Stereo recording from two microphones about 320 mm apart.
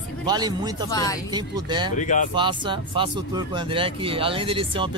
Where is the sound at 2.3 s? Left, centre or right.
Centre.